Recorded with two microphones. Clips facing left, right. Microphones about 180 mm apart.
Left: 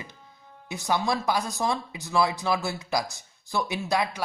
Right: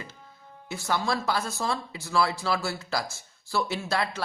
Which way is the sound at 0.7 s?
15° left (ahead or behind).